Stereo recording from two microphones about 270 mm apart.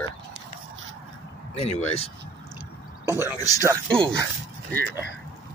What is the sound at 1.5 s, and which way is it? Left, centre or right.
Speech, left.